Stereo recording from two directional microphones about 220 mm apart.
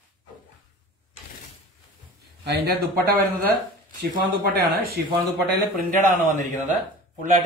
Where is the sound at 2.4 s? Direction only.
45° right (ahead or behind).